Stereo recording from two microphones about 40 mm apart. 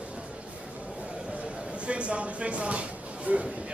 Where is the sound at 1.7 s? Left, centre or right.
Right.